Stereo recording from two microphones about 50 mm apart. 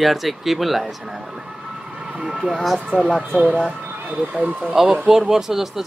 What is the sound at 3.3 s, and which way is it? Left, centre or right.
Speech, right.